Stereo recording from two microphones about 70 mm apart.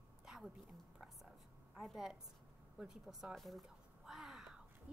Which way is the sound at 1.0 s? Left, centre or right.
Centre.